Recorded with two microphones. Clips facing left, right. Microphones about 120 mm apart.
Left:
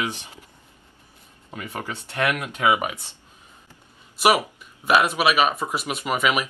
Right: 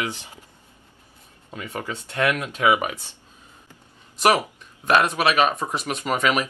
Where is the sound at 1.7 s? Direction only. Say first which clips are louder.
Right 2 dB; 15° left (ahead or behind).